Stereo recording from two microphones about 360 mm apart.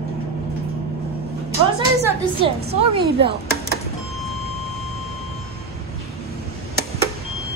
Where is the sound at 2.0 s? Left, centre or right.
Centre.